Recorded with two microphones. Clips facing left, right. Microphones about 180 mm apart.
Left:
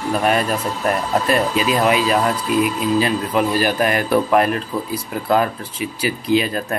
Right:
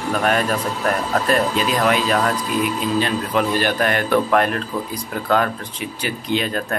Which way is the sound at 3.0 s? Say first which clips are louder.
Left 1 dB; 5° left (ahead or behind).